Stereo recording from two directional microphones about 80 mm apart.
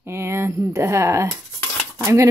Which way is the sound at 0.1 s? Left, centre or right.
Right.